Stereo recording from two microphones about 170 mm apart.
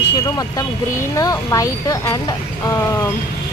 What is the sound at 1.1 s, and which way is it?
Speech, 20° left (ahead or behind).